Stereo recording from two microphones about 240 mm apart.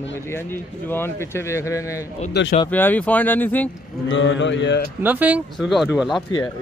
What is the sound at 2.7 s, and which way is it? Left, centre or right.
Speech, centre.